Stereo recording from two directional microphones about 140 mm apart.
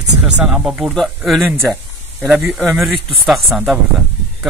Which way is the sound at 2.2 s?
10° right (ahead or behind).